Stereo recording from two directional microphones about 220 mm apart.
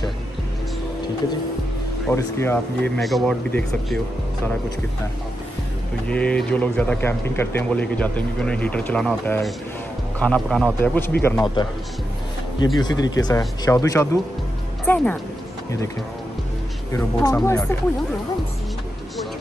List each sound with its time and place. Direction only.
2.0 s speech: 10° left (ahead or behind)
3.0 s speech: centre (ahead or behind)
6.0 s speech: 5° left (ahead or behind)
11.2 s speech: 15° left (ahead or behind)
16.9 s speech: 15° left (ahead or behind)